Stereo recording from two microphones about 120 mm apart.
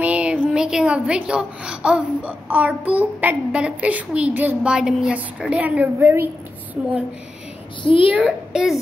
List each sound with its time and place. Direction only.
0.0 s a woman's voice: 10° right (ahead or behind)
7.8 s a child's voice: 45° left (ahead or behind)
8.1 s a child's voice: 10° right (ahead or behind)